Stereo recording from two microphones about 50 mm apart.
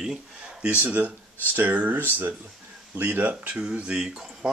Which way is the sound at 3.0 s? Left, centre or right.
Right.